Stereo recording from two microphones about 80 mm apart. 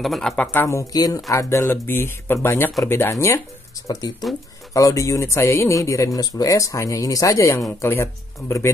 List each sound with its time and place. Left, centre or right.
0.0 s speech: centre
0.4 s speech: left
0.9 s speech: left
1.3 s speech: left
1.7 s speech: left
3.8 s speech: left